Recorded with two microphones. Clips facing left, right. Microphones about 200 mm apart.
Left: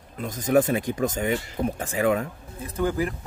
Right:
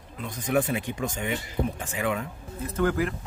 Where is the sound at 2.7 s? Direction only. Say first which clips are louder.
Even; 15° left (ahead or behind).